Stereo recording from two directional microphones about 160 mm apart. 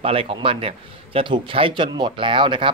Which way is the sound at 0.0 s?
35° right (ahead or behind).